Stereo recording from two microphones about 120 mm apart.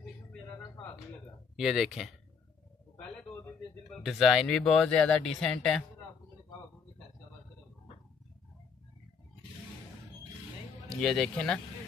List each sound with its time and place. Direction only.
0.3 s a sound: 10° left (ahead or behind)
1.6 s speech: centre (ahead or behind)
4.0 s speech: centre (ahead or behind)
10.9 s speech: 5° left (ahead or behind)